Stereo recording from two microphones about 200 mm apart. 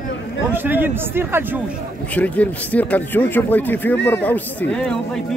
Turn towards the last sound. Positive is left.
turn(degrees=5)  # may be behind; listen again after turning